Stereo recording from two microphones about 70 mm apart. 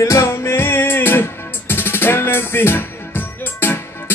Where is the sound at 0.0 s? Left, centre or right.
Left.